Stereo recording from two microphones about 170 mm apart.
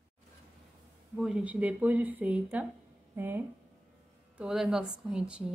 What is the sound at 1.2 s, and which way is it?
Speech, 5° right (ahead or behind).